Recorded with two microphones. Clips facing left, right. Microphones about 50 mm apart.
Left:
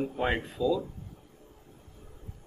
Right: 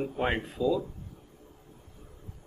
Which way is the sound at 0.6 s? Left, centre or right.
Centre.